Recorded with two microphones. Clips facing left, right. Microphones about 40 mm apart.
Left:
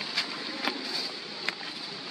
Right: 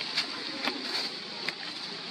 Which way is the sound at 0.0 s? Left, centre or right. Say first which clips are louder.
Left 1 dB; centre.